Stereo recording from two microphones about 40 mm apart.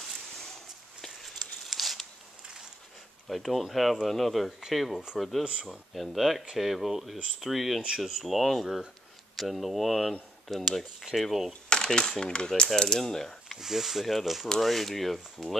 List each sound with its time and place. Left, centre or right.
1.0 s a sound: centre
3.3 s speech: centre
5.4 s speech: right
5.9 s speech: centre
11.0 s speech: centre
11.7 s speech: centre
12.7 s mechanisms: centre
13.6 s speech: centre